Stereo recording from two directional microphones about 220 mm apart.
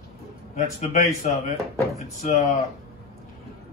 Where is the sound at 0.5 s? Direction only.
35° left (ahead or behind).